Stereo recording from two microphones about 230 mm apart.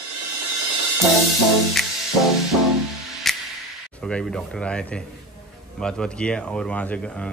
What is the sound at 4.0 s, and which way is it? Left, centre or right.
Speech, centre.